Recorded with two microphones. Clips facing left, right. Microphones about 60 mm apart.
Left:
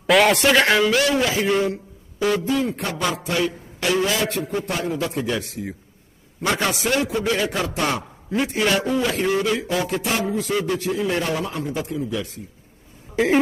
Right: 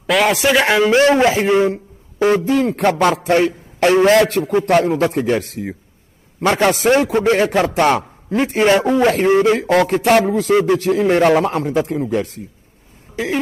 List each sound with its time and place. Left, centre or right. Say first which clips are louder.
0.0 s a man's voice: right 1 dB; centre
0.7 s a man's voice: right 6 dB; right
2.5 s a man's voice: right 8 dB; right
3.3 s a man's voice: right 8 dB; right
6.4 s a man's voice: right 8 dB; right
8.5 s speech: right 8 dB; right
10.0 s a man's voice: right 10 dB; right